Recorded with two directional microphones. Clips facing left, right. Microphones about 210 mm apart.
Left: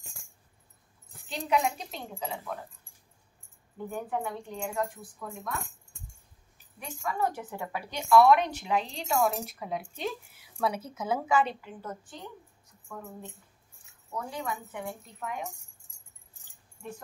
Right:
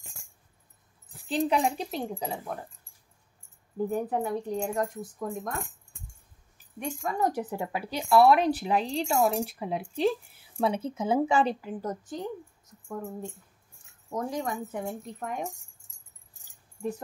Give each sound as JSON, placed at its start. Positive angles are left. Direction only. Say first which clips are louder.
{"t": 1.3, "sound": "a woman's voice", "louder": "right 3 dB", "side_deg": -30}
{"t": 3.7, "sound": "a woman's voice", "louder": "right 6 dB", "side_deg": -40}
{"t": 7.0, "sound": "a woman's voice", "louder": "right 2 dB", "side_deg": -40}